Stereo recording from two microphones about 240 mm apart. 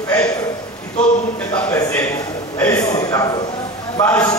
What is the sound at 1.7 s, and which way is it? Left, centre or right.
Speech, centre.